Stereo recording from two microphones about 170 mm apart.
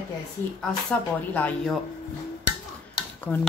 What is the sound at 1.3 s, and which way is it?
Speech, 10° left (ahead or behind).